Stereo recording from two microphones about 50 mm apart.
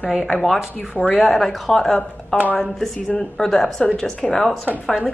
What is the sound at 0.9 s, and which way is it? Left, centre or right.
Speech, left.